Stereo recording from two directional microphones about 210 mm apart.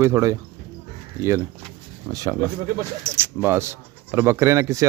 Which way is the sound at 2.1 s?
15° right (ahead or behind).